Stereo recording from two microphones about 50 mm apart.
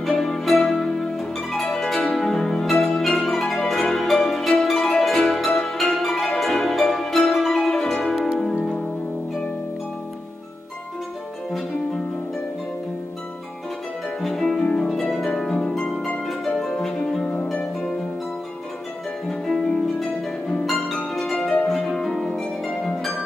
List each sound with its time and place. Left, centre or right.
0.2 s music: centre
1.1 s harp: centre
2.1 s music: centre
4.3 s harp: centre
5.0 s music: centre
14.2 s harp: centre
14.6 s harp: centre
14.9 s harp: centre
17.3 s harp: left
19.2 s harp: centre